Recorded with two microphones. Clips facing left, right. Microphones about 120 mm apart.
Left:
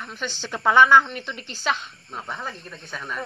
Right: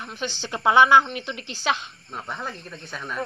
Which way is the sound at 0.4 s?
5° right (ahead or behind).